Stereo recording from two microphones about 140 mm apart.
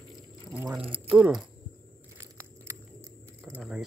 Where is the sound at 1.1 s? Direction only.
5° right (ahead or behind).